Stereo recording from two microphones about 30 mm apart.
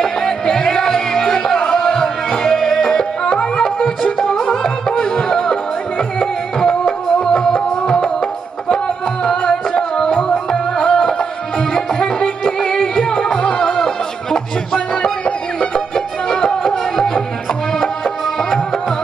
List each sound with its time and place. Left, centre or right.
0.0 s music: centre
5.3 s music: centre
15.2 s music: left; by 18.9 s centre